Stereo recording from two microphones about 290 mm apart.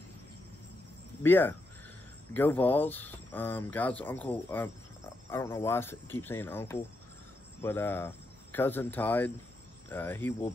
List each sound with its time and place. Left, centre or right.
1.2 s speech: centre